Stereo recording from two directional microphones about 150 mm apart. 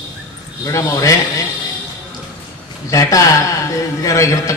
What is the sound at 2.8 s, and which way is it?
A man's voice, 20° left (ahead or behind).